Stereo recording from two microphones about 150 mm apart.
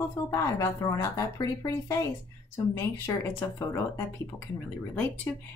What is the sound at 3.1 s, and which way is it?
Speech, 15° left (ahead or behind).